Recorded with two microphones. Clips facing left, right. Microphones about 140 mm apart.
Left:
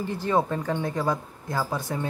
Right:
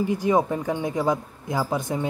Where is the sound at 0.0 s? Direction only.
15° right (ahead or behind).